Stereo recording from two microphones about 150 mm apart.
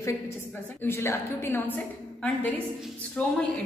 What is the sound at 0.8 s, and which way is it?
Speech, 20° left (ahead or behind).